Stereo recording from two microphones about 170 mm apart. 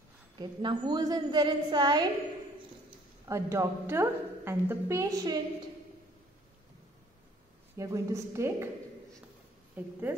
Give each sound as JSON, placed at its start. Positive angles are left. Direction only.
{"t": 0.4, "sound": "a woman's voice", "side_deg": -25}
{"t": 3.3, "sound": "a woman's voice", "side_deg": -15}
{"t": 7.7, "sound": "a woman's voice", "side_deg": -20}
{"t": 9.8, "sound": "a woman's voice", "side_deg": -10}